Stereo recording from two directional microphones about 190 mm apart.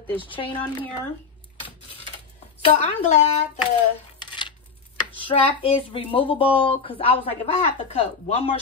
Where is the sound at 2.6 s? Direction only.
40° left (ahead or behind).